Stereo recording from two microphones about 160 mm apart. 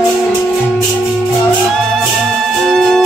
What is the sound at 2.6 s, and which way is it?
Music, 5° left (ahead or behind).